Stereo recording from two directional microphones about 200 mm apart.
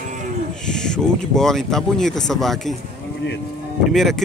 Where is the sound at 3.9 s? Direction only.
Centre (ahead or behind).